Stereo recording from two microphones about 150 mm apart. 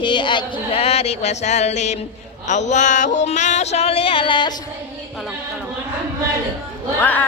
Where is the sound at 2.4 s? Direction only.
50° left (ahead or behind); by 4.5 s 30° left (ahead or behind).